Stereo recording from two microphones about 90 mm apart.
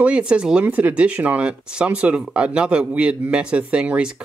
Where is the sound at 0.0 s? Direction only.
10° right (ahead or behind).